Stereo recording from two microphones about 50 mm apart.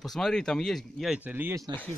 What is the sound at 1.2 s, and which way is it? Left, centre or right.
Speech, right.